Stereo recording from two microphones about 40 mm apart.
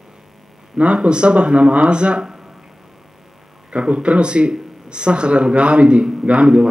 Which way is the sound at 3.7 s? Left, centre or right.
Right.